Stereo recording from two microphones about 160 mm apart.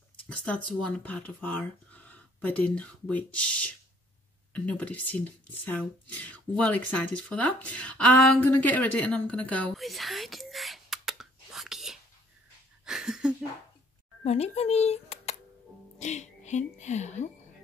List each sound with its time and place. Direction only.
0.7 s speech: 10° left (ahead or behind)
12.8 s a sound: 5° right (ahead or behind)
14.2 s a woman's voice: 40° left (ahead or behind)